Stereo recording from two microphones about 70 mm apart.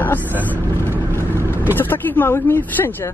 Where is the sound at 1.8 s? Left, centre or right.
Left.